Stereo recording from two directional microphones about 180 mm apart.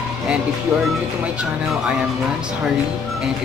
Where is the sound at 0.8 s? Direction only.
5° right (ahead or behind).